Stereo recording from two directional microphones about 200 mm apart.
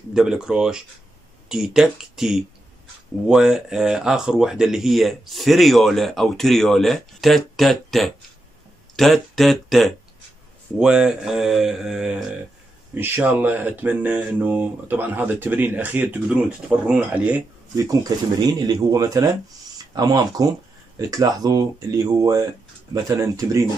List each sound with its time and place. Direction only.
0.1 s speech: 5° right (ahead or behind)
17.8 s speech: 20° right (ahead or behind)